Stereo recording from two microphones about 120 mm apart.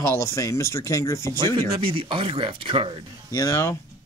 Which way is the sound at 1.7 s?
50° right (ahead or behind).